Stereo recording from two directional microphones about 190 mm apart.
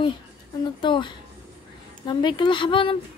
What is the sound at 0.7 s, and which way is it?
Speech, 25° left (ahead or behind).